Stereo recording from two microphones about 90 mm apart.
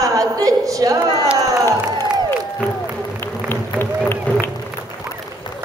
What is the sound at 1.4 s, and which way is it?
Music, 40° right (ahead or behind).